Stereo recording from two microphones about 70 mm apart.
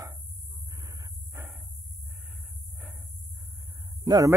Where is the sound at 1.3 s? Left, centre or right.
Right.